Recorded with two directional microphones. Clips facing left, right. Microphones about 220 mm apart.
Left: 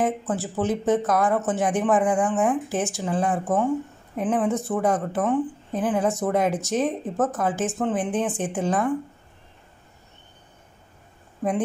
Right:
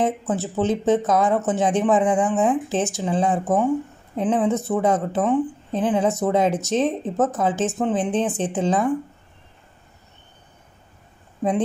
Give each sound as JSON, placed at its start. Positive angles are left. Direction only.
{"t": 0.0, "sound": "a woman's voice", "side_deg": -20}